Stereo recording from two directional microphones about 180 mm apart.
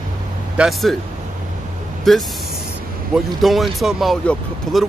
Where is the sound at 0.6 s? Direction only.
Centre (ahead or behind).